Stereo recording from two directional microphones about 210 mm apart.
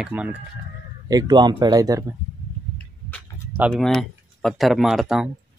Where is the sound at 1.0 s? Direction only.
20° right (ahead or behind).